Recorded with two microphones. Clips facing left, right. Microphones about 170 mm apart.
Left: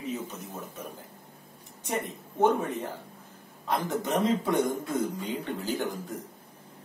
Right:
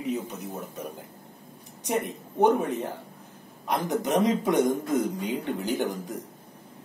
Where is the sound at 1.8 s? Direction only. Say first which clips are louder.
Right 4 dB; 15° right (ahead or behind).